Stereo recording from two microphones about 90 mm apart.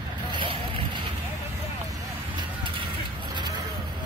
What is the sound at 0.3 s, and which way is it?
Vehicle, 70° right (ahead or behind).